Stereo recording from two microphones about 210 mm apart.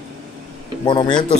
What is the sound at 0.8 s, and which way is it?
Speech, 20° left (ahead or behind).